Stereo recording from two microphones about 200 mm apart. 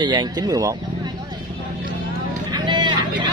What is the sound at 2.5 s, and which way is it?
Vehicle, 20° right (ahead or behind).